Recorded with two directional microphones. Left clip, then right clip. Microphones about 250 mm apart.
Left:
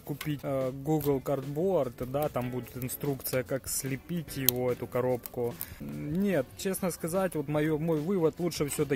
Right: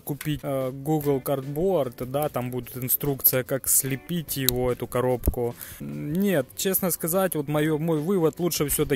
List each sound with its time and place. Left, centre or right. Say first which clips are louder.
0.3 s speech: right 4 dB; right